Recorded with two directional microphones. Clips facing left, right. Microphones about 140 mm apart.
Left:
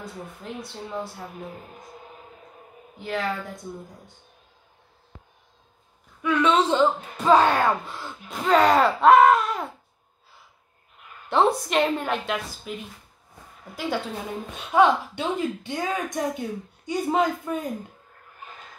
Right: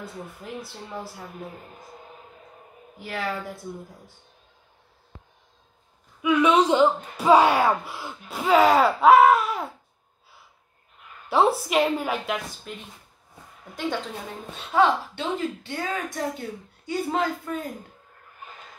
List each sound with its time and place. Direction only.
0.0 s a woman's voice: 5° right (ahead or behind)
3.0 s a woman's voice: 5° right (ahead or behind)
6.2 s speech: 10° right (ahead or behind)
11.2 s a woman's voice: 5° right (ahead or behind)
14.5 s a woman's voice: 15° left (ahead or behind)